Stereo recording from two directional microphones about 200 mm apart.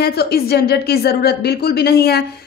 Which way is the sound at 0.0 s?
50° left (ahead or behind).